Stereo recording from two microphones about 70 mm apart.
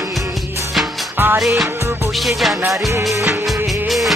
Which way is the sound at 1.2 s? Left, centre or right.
Right.